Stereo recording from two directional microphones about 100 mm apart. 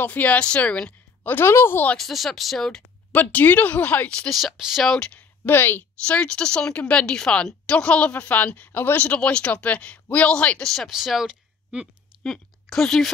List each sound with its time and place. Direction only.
0.0 s speech: 15° left (ahead or behind)
2.0 s speech: centre (ahead or behind)
3.1 s speech: 15° left (ahead or behind)
10.7 s speech: centre (ahead or behind)
12.2 s a woman's voice: 5° left (ahead or behind)